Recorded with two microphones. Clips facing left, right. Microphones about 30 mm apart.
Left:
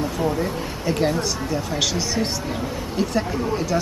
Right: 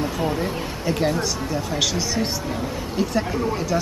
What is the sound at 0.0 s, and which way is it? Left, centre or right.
Speech, centre.